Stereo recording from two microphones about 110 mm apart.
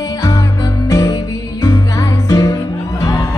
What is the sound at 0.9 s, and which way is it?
Music, 30° left (ahead or behind).